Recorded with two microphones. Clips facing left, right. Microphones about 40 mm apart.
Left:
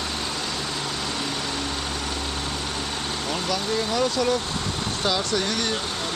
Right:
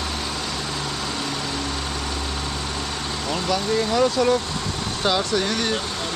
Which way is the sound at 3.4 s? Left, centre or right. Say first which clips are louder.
Right 5 dB; right.